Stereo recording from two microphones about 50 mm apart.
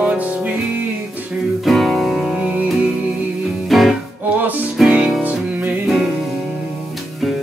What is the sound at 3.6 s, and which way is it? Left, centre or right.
Music, centre.